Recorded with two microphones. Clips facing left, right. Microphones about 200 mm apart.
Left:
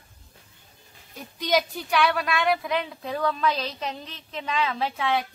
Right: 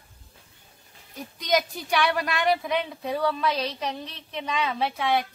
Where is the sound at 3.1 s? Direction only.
15° right (ahead or behind).